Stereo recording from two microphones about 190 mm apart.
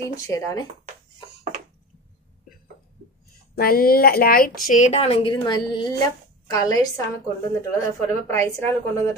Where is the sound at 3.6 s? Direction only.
50° left (ahead or behind); by 7.0 s 20° left (ahead or behind).